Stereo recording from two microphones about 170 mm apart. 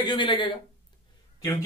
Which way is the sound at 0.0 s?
30° left (ahead or behind).